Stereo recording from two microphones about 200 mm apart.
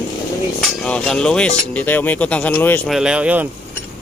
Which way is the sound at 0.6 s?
5° left (ahead or behind).